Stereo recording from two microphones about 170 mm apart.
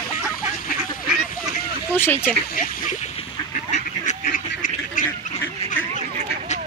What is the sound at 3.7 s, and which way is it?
Duck, 45° left (ahead or behind).